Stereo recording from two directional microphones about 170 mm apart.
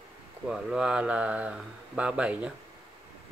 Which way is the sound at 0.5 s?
5° right (ahead or behind).